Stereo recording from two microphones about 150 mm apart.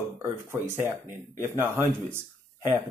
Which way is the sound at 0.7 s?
15° right (ahead or behind).